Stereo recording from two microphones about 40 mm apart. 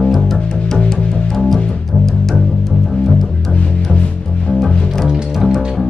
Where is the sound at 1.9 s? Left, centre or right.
Centre.